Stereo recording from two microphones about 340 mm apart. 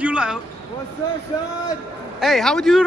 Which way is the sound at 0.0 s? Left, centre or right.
Centre.